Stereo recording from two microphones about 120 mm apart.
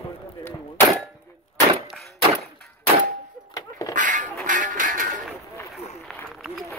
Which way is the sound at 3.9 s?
90° right.